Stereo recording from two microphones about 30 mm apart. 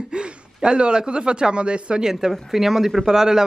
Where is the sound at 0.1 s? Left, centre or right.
Right.